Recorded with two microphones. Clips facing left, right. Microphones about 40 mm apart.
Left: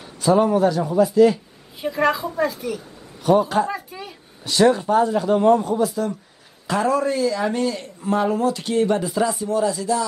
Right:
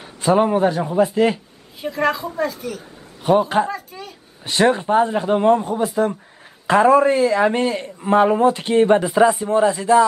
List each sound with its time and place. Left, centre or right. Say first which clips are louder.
0.0 s a man's voice: right 1 dB; right
1.8 s speech: even; centre
3.3 s a man's voice: right 1 dB; right
3.7 s a sound: even; centre
4.5 s a man's voice: even; right